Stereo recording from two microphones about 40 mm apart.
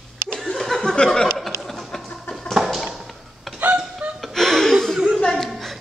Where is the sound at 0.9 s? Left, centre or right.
Centre.